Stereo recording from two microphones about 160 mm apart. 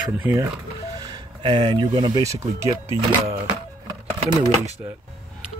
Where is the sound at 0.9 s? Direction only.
25° right (ahead or behind).